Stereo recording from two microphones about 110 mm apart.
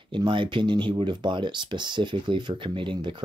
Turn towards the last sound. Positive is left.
turn(degrees=-50)  # may be behind; listen again after turning